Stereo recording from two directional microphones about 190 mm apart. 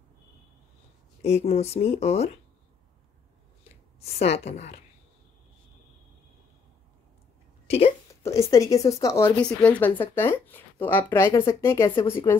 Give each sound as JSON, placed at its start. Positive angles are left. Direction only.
{"t": 1.2, "sound": "speech", "side_deg": 35}
{"t": 4.0, "sound": "speech", "side_deg": 35}
{"t": 7.6, "sound": "speech", "side_deg": 35}
{"t": 8.2, "sound": "speech", "side_deg": 15}